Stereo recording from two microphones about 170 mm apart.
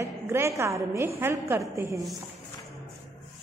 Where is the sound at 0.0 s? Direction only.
15° right (ahead or behind).